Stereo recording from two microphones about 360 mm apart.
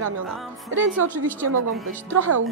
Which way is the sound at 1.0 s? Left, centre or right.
Right.